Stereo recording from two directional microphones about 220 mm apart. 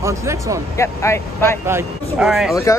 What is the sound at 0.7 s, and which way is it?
Speech, 15° left (ahead or behind).